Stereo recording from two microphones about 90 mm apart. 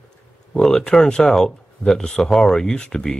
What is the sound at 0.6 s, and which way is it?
Speech, 5° left (ahead or behind).